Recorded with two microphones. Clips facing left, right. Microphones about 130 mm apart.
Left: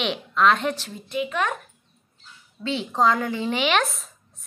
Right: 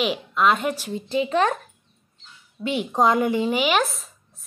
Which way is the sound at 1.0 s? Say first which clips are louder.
Right 7 dB; 30° right (ahead or behind).